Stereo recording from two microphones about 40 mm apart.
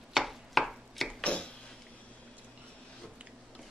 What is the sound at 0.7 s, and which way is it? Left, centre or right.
Chopping, centre.